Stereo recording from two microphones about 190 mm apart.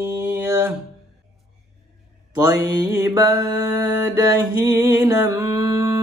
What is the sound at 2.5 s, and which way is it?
Music, 15° right (ahead or behind).